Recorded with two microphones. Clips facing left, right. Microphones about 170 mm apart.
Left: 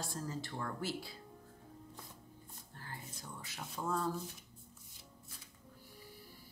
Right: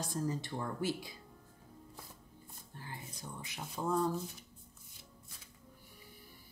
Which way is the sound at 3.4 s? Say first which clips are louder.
Right 3 dB; 15° right (ahead or behind).